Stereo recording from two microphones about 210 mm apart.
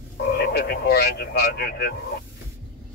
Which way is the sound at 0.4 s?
50° left (ahead or behind).